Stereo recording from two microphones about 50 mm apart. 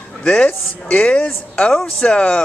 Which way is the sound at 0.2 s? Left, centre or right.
Centre.